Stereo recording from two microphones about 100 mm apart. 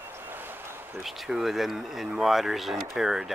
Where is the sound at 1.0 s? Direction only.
Centre (ahead or behind).